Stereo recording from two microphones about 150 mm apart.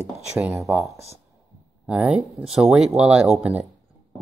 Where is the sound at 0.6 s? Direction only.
Centre (ahead or behind).